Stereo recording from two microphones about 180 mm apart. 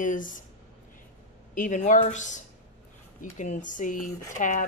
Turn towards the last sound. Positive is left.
turn(degrees=45)  # may be behind; listen again after turning